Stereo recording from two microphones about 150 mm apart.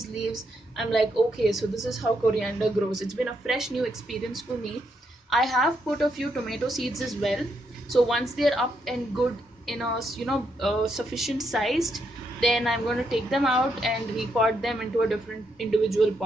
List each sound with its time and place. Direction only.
0.0 s a woman's voice: centre (ahead or behind)